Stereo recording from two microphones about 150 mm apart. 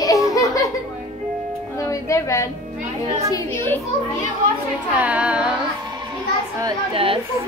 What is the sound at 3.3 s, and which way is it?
Speech, 15° left (ahead or behind).